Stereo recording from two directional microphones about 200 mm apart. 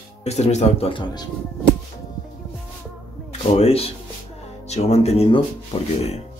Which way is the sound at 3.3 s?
30° left (ahead or behind).